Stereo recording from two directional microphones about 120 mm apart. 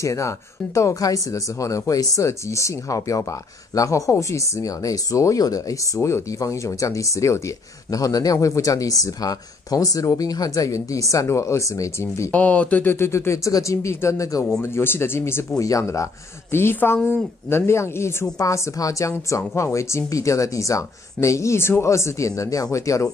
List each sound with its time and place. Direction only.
0.0 s speech: 25° left (ahead or behind)
12.3 s speech: 10° left (ahead or behind)